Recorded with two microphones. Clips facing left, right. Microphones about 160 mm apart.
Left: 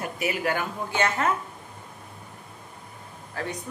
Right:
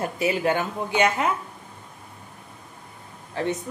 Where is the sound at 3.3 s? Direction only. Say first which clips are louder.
Right 6 dB; 20° right (ahead or behind).